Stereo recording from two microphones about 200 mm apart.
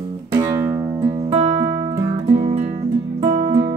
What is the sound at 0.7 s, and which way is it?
Music, 25° right (ahead or behind).